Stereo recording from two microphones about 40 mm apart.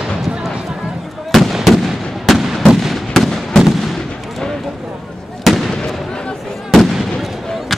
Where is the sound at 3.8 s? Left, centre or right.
Centre.